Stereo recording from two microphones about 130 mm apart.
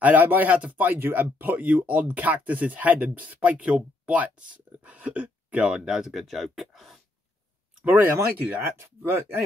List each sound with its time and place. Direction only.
0.0 s speech: 15° right (ahead or behind)
7.8 s speech: 15° right (ahead or behind)